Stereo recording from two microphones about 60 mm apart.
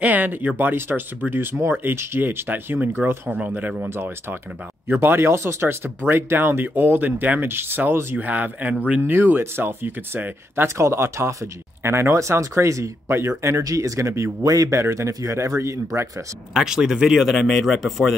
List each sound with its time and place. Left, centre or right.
0.0 s speech: right
3.9 s speech: right
8.2 s speech: right
10.8 s a man's voice: right
13.7 s a man's voice: right
14.4 s speech: right
14.7 s a man's voice: right
16.5 s speech: centre